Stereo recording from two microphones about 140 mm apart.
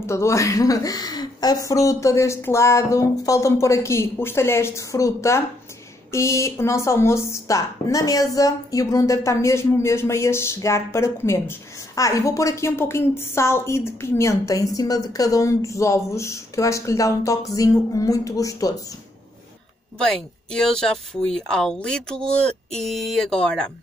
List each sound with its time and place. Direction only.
0.0 s a woman's voice: 20° left (ahead or behind)
20.5 s speech: 5° left (ahead or behind)